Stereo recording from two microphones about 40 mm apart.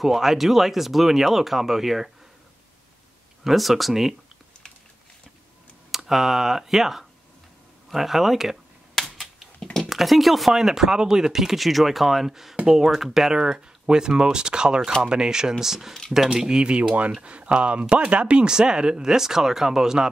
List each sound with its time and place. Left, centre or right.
0.0 s speech: centre
3.4 s speech: centre
5.9 s speech: centre
9.0 s typewriter: centre
9.8 s speech: centre
13.3 s speech: centre